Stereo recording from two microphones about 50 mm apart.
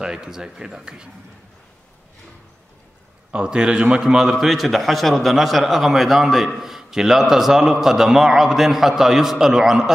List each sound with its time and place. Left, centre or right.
0.0 s a man's voice: centre
3.3 s a man's voice: centre